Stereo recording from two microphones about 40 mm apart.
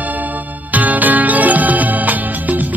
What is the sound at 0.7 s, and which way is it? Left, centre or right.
Music, right.